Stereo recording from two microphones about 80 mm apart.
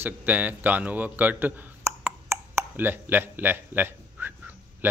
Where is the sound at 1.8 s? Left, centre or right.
Right.